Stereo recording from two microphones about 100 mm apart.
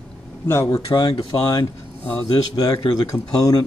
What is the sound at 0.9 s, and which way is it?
Speech, 55° left (ahead or behind).